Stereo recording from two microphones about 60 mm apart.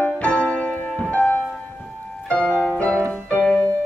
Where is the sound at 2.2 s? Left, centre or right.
Centre.